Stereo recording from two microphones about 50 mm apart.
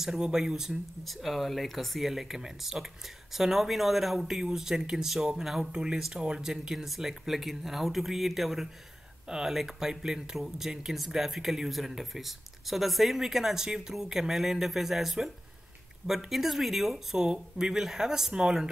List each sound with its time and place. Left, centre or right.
0.0 s speech: centre